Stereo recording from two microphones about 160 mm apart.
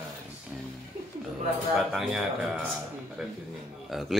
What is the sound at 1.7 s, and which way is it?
A man's voice, centre (ahead or behind).